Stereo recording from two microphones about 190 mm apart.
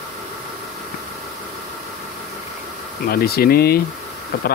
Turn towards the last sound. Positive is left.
turn(degrees=55)  # may be behind; listen again after turning